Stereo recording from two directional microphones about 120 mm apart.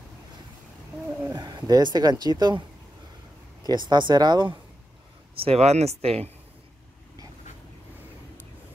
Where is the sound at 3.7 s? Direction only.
40° right (ahead or behind).